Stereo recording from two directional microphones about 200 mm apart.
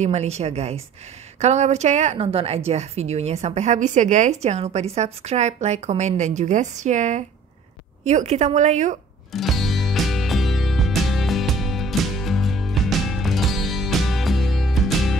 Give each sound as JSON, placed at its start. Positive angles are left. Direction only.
{"t": 0.0, "sound": "a woman's voice", "side_deg": -35}
{"t": 9.3, "sound": "music", "side_deg": 0}